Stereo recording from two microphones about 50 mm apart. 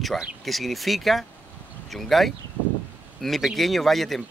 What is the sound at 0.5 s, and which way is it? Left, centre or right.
A man's voice, centre.